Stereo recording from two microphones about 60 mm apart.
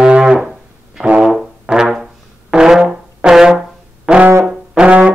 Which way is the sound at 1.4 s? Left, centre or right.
Centre.